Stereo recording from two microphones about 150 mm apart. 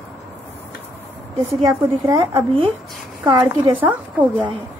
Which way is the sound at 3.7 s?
10° right (ahead or behind).